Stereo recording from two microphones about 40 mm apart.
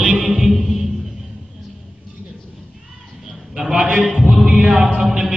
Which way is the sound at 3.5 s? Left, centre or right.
Centre.